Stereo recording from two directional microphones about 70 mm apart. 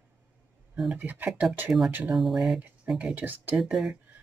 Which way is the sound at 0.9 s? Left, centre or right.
Right.